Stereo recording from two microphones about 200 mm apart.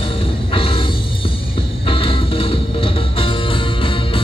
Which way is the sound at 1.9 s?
25° left (ahead or behind).